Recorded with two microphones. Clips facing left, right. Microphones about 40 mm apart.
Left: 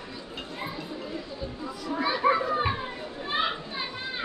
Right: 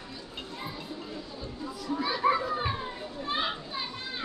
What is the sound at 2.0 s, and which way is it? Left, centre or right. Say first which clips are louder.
Children playing: left 3 dB; centre.